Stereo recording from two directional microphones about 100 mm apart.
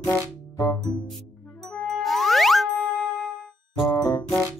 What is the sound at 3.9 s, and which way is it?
Music, 35° left (ahead or behind).